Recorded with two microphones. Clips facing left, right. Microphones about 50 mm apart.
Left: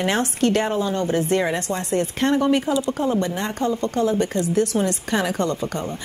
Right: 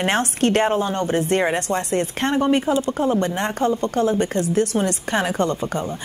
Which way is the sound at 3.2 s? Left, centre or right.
Right.